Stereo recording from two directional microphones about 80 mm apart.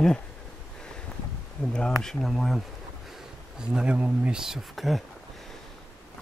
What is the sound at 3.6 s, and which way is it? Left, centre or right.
Speech, centre.